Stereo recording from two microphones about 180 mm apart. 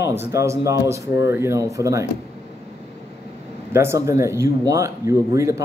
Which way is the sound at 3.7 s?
15° right (ahead or behind).